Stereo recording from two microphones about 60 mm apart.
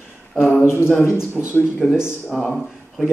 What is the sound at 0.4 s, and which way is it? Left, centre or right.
Speech, left.